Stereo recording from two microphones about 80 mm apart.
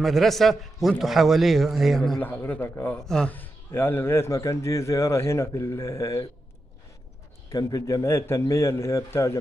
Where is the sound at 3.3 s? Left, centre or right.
Left.